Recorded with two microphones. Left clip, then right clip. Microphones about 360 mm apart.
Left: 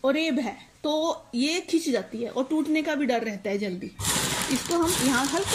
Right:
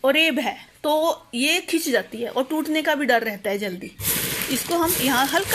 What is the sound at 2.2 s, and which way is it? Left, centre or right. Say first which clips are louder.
A woman's voice: right 3 dB; right.